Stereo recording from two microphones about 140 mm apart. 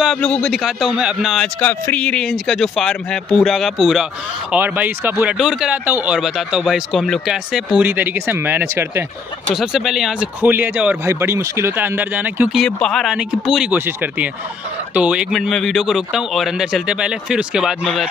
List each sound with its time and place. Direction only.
0.0 s speech: 5° left (ahead or behind)
1.6 s a man's voice: 10° left (ahead or behind); by 9.0 s 15° right (ahead or behind)
9.5 s a man's voice: 5° right (ahead or behind)
12.5 s a man's voice: 5° left (ahead or behind)